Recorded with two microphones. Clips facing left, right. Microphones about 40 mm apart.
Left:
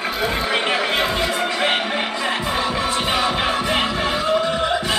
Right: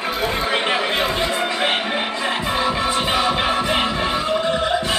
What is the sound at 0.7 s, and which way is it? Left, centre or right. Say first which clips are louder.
Chatter: even; centre.